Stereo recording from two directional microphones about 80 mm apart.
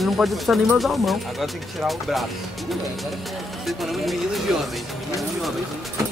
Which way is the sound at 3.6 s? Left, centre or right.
Centre.